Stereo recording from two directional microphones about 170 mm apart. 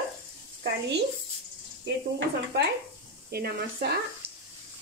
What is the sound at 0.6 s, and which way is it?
Speech, 90° right.